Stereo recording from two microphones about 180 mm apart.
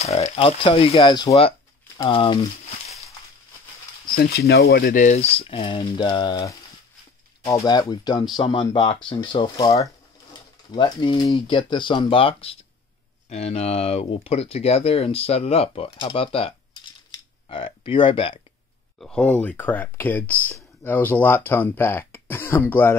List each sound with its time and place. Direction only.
0.0 s speech: 35° left (ahead or behind)
4.1 s speech: 60° left (ahead or behind); by 18.3 s 30° left (ahead or behind)
18.9 s speech: 5° left (ahead or behind)